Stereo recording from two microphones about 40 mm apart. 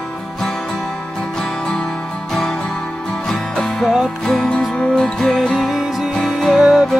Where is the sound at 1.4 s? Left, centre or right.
Left.